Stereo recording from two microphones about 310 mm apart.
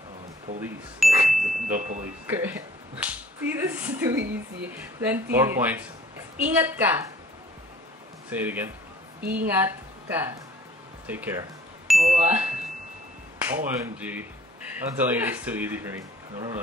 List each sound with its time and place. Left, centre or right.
0.6 s a man's voice: centre
1.8 s speech: right
2.2 s speech: centre
4.2 s speech: right
4.6 s speech: centre
8.3 s a man's voice: centre
12.0 s a sound: right
13.4 s a man's voice: centre